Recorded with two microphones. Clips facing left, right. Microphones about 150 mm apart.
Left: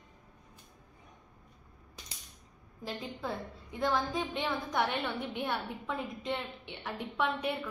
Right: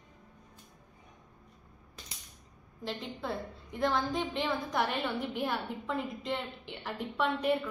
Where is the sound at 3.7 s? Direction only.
Centre (ahead or behind).